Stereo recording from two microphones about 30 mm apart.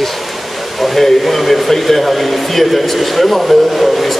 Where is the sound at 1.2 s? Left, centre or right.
Centre.